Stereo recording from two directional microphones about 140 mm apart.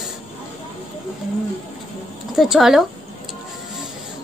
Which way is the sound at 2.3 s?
5° right (ahead or behind).